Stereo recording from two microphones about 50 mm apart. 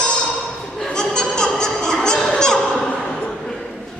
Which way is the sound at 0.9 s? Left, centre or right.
Centre.